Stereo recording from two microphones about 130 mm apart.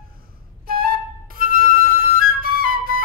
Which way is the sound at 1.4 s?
90° right.